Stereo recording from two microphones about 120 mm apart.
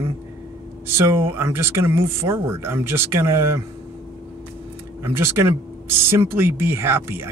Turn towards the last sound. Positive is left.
turn(degrees=-20)  # may be behind; listen again after turning